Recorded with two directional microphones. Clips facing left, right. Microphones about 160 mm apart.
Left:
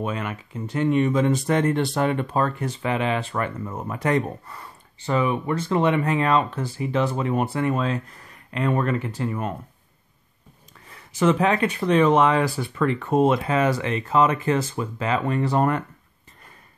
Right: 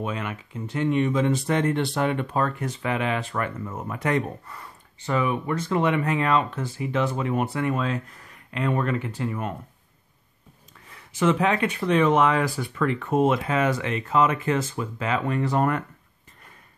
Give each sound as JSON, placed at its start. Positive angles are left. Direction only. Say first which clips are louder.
{"t": 0.0, "sound": "speech", "louder": "left 2 dB", "side_deg": 40}
{"t": 10.9, "sound": "speech", "louder": "left 2 dB", "side_deg": 40}